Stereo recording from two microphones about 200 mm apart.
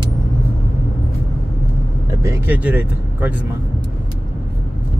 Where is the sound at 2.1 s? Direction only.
15° right (ahead or behind).